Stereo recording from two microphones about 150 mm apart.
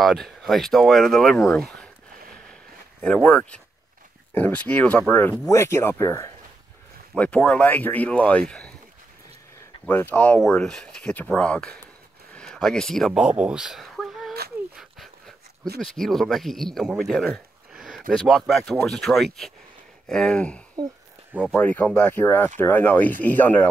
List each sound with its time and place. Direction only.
0.0 s speech: centre (ahead or behind)
3.0 s speech: 5° left (ahead or behind)
7.2 s speech: 10° left (ahead or behind)
9.8 s speech: 10° left (ahead or behind)
14.8 s dog: centre (ahead or behind)
15.8 s speech: centre (ahead or behind)